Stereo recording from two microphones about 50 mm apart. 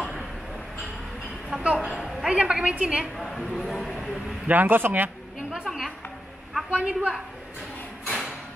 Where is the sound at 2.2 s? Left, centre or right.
Centre.